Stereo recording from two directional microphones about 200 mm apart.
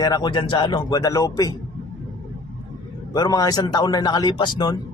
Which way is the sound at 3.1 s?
20° left (ahead or behind).